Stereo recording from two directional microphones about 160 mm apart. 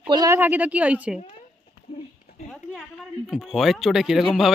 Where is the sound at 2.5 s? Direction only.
Centre (ahead or behind).